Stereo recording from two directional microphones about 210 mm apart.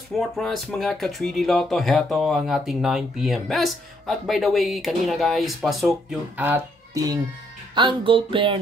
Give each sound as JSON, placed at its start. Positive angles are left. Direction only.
{"t": 0.4, "sound": "speech", "side_deg": 0}
{"t": 7.7, "sound": "speech", "side_deg": -25}